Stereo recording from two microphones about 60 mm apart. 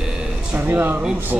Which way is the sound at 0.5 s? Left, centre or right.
Right.